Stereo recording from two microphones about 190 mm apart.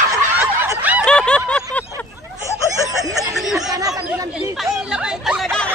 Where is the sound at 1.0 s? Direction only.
5° left (ahead or behind).